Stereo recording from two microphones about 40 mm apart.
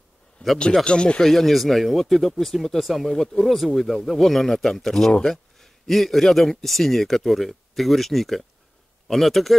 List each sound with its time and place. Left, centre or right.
0.4 s speech: left
0.8 s speech: left
1.2 s a man's voice: centre